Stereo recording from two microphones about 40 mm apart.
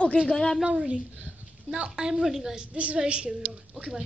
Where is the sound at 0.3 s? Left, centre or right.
Centre.